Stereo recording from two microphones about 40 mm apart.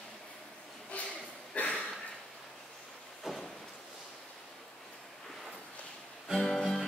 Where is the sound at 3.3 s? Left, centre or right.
Centre.